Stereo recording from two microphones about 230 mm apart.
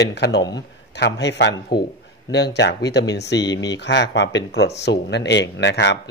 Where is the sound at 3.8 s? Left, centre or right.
Left.